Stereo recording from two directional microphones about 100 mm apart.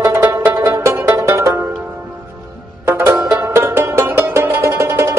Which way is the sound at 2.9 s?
25° right (ahead or behind).